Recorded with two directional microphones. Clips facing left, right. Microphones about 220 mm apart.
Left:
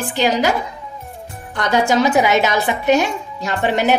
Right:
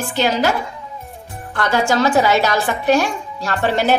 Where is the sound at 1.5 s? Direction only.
15° left (ahead or behind).